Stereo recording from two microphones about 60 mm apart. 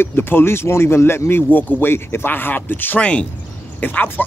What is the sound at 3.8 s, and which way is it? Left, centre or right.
Speech, left.